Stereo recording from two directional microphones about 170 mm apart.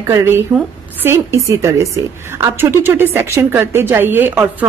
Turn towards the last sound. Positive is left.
turn(degrees=-10)  # may be behind; listen again after turning